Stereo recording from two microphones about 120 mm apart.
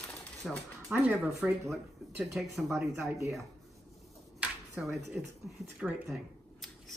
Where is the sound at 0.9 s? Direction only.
15° right (ahead or behind).